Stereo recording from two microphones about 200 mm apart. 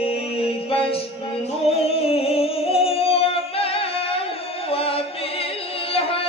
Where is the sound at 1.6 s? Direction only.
30° left (ahead or behind).